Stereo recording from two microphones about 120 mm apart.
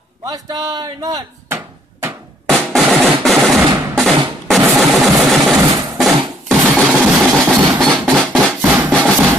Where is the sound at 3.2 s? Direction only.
Centre (ahead or behind).